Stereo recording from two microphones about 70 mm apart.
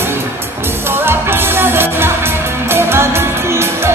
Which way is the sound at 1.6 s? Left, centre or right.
Right.